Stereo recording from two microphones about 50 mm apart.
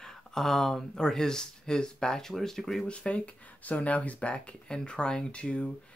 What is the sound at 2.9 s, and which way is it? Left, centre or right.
Speech, left.